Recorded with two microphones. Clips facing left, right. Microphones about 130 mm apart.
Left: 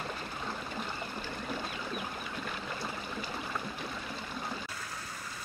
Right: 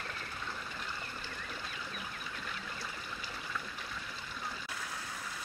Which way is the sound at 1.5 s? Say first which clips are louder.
Left 9 dB; 50° left (ahead or behind).